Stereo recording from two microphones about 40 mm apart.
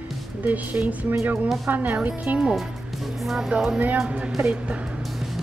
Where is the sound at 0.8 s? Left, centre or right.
Right.